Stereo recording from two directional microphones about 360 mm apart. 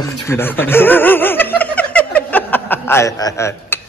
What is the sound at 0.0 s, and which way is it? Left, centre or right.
Snicker, centre.